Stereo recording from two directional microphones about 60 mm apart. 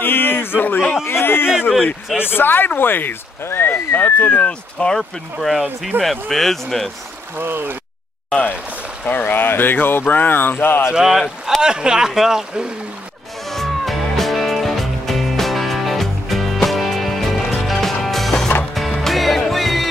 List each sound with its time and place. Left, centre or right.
0.0 s a sound: left
1.0 s speech: left
4.4 s speech: centre
5.4 s speech: centre
7.3 s speech: right
9.0 s speech: left
11.0 s speech: centre
11.6 s speech: centre
13.5 s music: centre